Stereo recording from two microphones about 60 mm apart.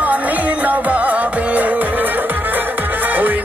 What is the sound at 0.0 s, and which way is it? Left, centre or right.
Music, right.